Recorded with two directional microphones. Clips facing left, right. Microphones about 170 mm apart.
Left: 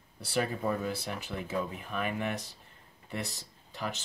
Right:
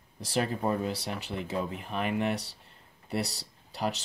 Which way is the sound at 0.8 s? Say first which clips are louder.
Right 2 dB; 35° right (ahead or behind).